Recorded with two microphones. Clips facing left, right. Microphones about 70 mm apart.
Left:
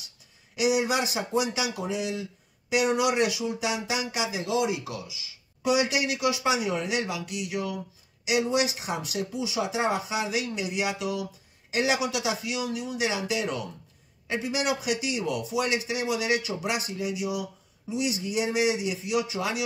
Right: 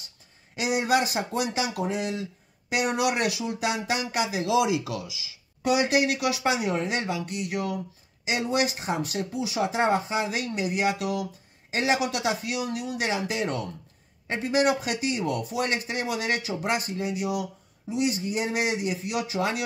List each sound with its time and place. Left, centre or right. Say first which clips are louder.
0.6 s a man's voice: right 1 dB; right
5.6 s a man's voice: right 2 dB; right
11.7 s a man's voice: right 1 dB; right